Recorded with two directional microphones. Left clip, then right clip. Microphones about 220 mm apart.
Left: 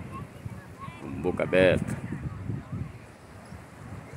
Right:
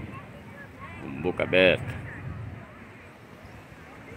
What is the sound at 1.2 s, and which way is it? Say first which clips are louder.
Speech: right 1 dB; 5° left (ahead or behind).